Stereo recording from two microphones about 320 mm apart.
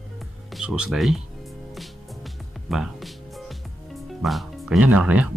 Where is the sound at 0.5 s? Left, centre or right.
Centre.